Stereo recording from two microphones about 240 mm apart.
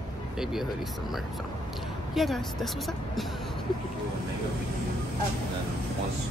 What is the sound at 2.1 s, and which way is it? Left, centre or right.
Speech, centre.